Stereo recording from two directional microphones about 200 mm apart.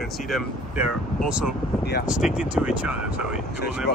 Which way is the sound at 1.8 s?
55° left (ahead or behind).